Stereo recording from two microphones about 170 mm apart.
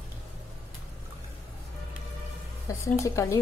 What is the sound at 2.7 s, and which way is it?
Speech, 20° left (ahead or behind).